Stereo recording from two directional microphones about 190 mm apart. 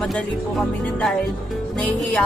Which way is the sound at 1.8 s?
5° left (ahead or behind).